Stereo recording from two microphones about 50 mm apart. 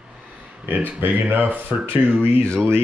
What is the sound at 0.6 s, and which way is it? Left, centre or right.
Speech, right.